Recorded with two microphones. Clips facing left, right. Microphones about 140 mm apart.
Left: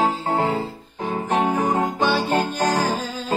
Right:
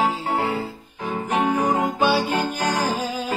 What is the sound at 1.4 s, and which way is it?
Music, 40° left (ahead or behind).